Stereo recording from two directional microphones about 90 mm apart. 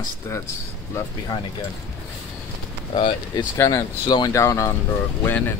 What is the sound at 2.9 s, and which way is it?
Speech, 60° left (ahead or behind).